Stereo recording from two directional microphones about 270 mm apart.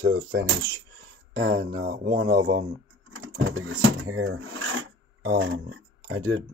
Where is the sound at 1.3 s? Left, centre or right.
Right.